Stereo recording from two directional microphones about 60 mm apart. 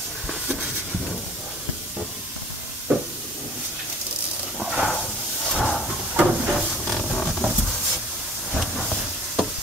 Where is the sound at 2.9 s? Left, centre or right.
Right.